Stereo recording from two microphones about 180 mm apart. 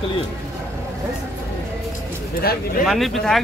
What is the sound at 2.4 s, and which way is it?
Speech, 55° left (ahead or behind).